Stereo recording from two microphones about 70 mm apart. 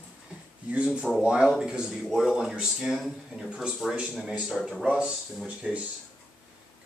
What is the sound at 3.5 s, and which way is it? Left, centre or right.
Speech, centre.